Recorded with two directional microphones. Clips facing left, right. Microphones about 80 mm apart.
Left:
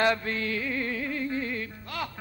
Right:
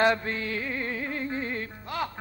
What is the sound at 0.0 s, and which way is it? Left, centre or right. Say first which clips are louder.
Music: right 1 dB; right.